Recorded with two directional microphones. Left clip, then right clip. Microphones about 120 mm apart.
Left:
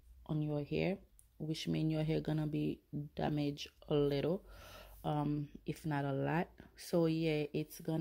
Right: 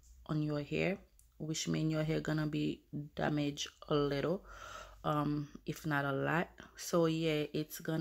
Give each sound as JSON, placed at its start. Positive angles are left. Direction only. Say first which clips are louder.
{"t": 0.3, "sound": "speech", "louder": "right 2 dB", "side_deg": 25}
{"t": 0.6, "sound": "speech", "louder": "even", "side_deg": 50}